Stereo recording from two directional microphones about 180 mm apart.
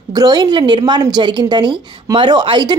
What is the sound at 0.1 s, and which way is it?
A woman's voice, 25° right (ahead or behind).